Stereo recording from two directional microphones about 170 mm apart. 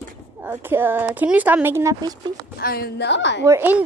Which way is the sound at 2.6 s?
65° left (ahead or behind).